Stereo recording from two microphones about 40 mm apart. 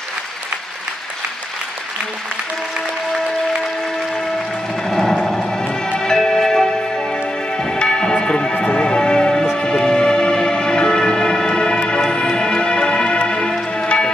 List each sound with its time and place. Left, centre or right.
4.8 s music: centre